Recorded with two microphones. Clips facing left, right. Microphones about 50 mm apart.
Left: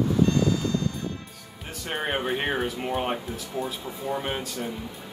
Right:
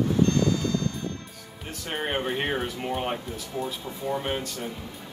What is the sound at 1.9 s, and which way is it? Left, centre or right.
Speech, centre.